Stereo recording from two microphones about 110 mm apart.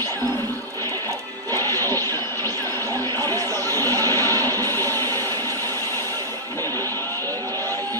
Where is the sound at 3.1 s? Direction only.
35° right (ahead or behind).